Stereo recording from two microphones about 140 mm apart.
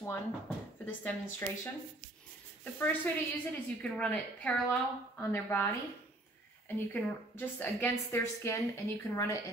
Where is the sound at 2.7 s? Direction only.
15° left (ahead or behind).